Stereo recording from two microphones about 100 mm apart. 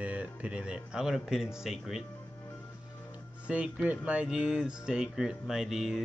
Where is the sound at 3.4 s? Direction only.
10° right (ahead or behind).